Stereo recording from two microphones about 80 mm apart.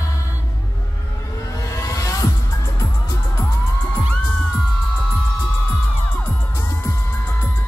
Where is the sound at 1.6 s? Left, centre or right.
Left.